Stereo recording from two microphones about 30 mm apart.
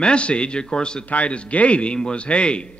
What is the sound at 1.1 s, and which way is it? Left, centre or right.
Speech, left.